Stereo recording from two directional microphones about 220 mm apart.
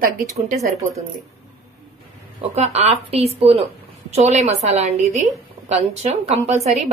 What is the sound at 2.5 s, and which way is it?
Speech, 30° right (ahead or behind).